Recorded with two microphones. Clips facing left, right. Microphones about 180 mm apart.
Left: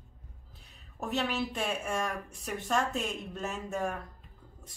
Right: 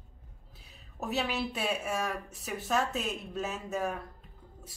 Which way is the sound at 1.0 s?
5° right (ahead or behind).